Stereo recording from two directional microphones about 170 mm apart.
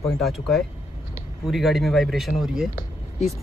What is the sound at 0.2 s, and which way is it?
Speech, centre (ahead or behind).